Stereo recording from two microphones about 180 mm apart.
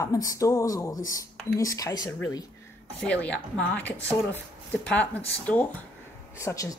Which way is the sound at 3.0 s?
5° left (ahead or behind).